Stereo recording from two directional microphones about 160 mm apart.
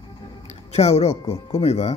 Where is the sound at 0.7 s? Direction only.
40° left (ahead or behind).